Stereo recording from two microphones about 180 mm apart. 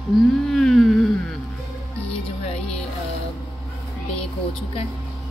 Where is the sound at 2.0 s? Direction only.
35° left (ahead or behind).